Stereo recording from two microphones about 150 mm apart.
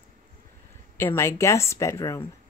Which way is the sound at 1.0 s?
15° left (ahead or behind).